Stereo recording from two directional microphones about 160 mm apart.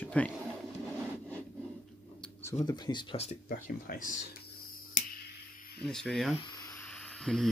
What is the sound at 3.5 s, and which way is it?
Speech, 65° left (ahead or behind).